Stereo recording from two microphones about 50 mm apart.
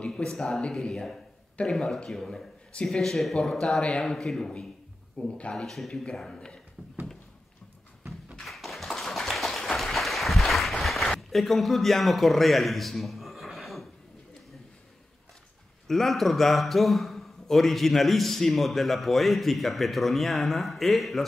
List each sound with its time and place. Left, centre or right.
0.0 s speech: centre
1.6 s speech: left
2.0 s speech: centre
5.7 s speech: centre
8.5 s applause: centre
15.9 s a man's voice: centre